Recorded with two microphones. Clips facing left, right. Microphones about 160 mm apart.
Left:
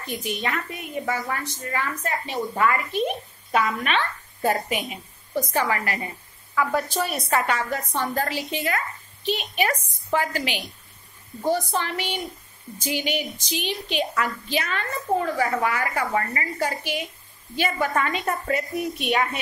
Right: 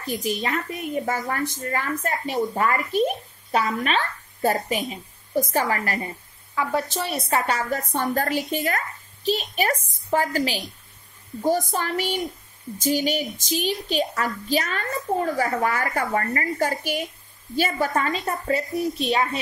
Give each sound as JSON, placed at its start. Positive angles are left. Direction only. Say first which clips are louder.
{"t": 0.0, "sound": "a woman's voice", "louder": "right 2 dB", "side_deg": -40}
{"t": 6.5, "sound": "a woman's voice", "louder": "left 1 dB", "side_deg": -25}